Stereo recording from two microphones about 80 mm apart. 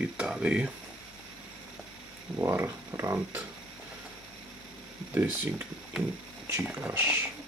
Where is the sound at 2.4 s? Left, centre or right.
Right.